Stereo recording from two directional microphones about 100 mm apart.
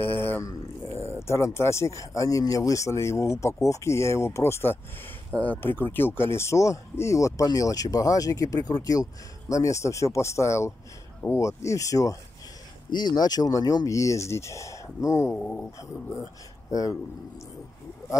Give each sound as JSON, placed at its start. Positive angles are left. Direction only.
{"t": 0.0, "sound": "mantra", "side_deg": 20}
{"t": 0.5, "sound": "speech", "side_deg": 25}
{"t": 12.9, "sound": "speech", "side_deg": 45}
{"t": 15.3, "sound": "speech", "side_deg": 15}